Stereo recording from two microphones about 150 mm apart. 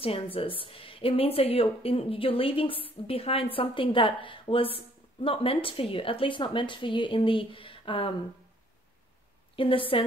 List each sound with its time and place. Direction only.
0.0 s a woman's voice: 40° left (ahead or behind)
9.6 s a woman's voice: 35° left (ahead or behind)